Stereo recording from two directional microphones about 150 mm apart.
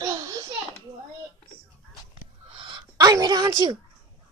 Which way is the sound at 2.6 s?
30° right (ahead or behind).